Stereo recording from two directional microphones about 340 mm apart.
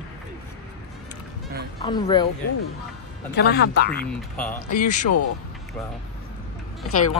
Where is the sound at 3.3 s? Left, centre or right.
Left.